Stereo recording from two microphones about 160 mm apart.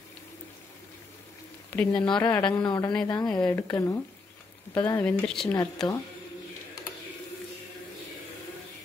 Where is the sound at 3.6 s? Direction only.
20° left (ahead or behind).